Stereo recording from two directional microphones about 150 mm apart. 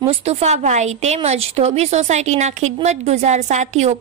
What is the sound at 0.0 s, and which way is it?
A woman's voice, 40° right (ahead or behind).